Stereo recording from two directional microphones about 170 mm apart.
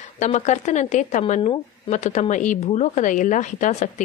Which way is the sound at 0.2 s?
45° left (ahead or behind).